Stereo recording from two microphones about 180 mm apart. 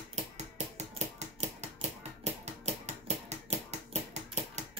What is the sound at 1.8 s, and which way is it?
Music, 40° right (ahead or behind).